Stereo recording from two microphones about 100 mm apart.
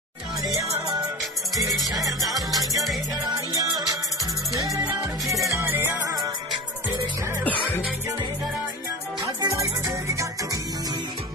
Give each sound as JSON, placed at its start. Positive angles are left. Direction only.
{"t": 2.0, "sound": "music", "side_deg": -35}
{"t": 5.5, "sound": "music", "side_deg": -25}
{"t": 9.4, "sound": "music", "side_deg": -40}